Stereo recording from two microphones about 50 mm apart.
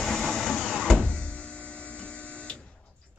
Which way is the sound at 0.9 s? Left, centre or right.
Left.